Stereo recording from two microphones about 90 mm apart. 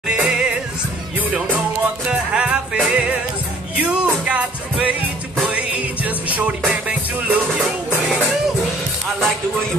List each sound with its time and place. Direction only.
0.1 s music: 10° right (ahead or behind)